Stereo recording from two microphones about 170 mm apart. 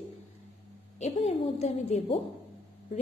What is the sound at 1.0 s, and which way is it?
A woman's voice, 40° left (ahead or behind).